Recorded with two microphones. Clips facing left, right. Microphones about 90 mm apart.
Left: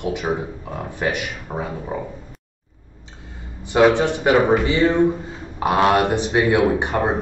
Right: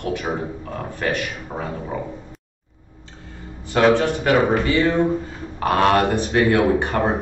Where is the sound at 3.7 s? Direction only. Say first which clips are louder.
Left 1 dB; 15° left (ahead or behind).